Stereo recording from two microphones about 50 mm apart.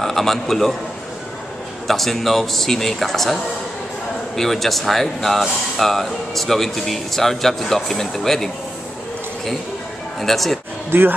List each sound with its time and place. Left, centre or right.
0.0 s a man's voice: centre
1.9 s speech: centre
4.4 s speech: centre
10.2 s speech: centre
10.9 s speech: right